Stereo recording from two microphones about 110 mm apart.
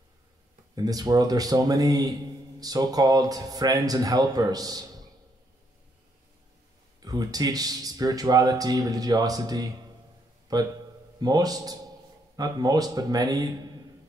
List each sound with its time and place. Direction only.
0.7 s speech: 35° right (ahead or behind)
7.0 s a man's voice: 35° right (ahead or behind)